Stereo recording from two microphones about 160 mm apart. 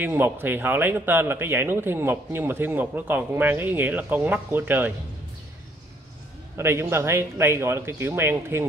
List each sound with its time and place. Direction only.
0.0 s speech: 15° right (ahead or behind)
6.5 s speech: 15° right (ahead or behind)